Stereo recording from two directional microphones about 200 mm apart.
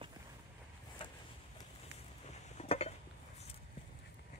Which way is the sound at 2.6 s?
30° left (ahead or behind).